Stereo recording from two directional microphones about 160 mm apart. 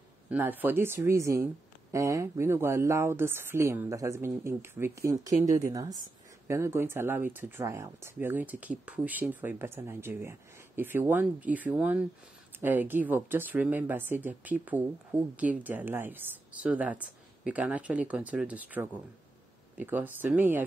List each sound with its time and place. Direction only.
0.3 s speech: 10° right (ahead or behind)